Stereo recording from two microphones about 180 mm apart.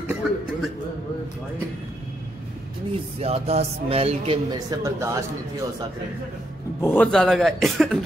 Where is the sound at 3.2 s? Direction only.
35° right (ahead or behind); by 5.1 s 15° right (ahead or behind).